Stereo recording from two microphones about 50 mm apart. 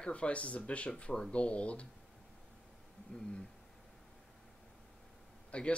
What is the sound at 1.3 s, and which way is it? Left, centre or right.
Speech, left.